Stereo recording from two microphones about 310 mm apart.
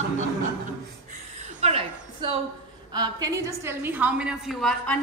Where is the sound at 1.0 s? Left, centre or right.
Right.